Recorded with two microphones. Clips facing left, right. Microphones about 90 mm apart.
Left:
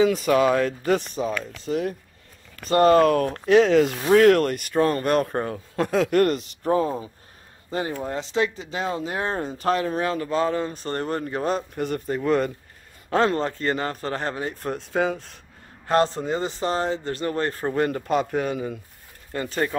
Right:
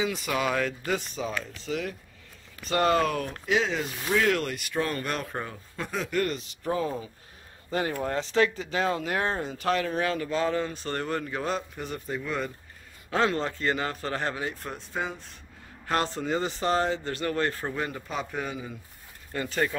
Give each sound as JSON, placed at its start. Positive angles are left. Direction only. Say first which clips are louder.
{"t": 0.0, "sound": "speech", "louder": "left 9 dB", "side_deg": 40}
{"t": 4.1, "sound": "speech", "louder": "left 9 dB", "side_deg": 50}
{"t": 5.8, "sound": "a man's voice", "louder": "left 9 dB", "side_deg": 70}
{"t": 6.6, "sound": "speech", "louder": "left 6 dB", "side_deg": 35}
{"t": 11.8, "sound": "speech", "louder": "left 8 dB", "side_deg": 55}
{"t": 12.3, "sound": "a man's voice", "louder": "left 12 dB", "side_deg": 65}
{"t": 13.1, "sound": "speech", "louder": "left 5 dB", "side_deg": 40}
{"t": 14.8, "sound": "speech", "louder": "left 12 dB", "side_deg": 75}
{"t": 15.9, "sound": "speech", "louder": "left 6 dB", "side_deg": 35}
{"t": 17.7, "sound": "a man's voice", "louder": "left 10 dB", "side_deg": 55}
{"t": 19.3, "sound": "speech", "louder": "left 3 dB", "side_deg": 35}